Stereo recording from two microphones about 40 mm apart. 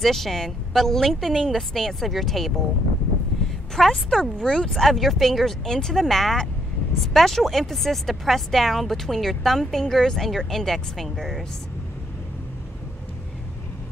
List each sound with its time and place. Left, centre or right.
0.0 s speech: centre
3.7 s speech: centre
4.2 s speech: centre
4.7 s speech: centre